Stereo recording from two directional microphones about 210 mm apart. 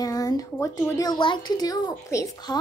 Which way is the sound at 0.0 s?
15° left (ahead or behind).